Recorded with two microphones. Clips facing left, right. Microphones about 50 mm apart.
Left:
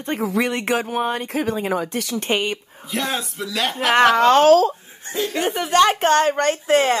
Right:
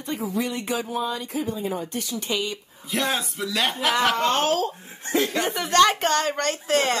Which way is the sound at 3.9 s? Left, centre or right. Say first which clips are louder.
Left 11 dB; left.